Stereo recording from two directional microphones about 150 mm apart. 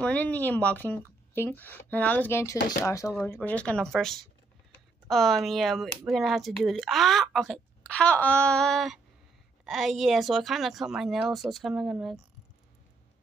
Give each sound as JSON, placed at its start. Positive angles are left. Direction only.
{"t": 0.0, "sound": "speech", "side_deg": 10}